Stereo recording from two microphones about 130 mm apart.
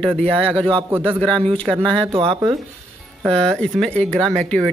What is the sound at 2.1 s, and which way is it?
Speech, 40° right (ahead or behind).